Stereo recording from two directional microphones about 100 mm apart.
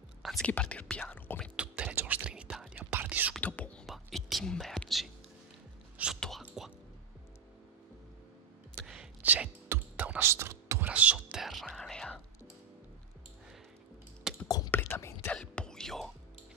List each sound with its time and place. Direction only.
0.2 s whispering: centre (ahead or behind)
0.5 s whispering: 15° left (ahead or behind)
1.6 s whispering: 10° right (ahead or behind)
3.3 s whispering: 15° left (ahead or behind)
3.8 s whispering: centre (ahead or behind)
6.1 s whispering: 5° left (ahead or behind)
8.8 s whispering: 10° right (ahead or behind)
10.2 s music: 30° right (ahead or behind)
10.9 s music: 15° right (ahead or behind)
11.4 s whispering: centre (ahead or behind)
14.3 s a sound: 5° right (ahead or behind)
14.7 s whispering: 20° left (ahead or behind)
15.3 s whispering: 10° left (ahead or behind)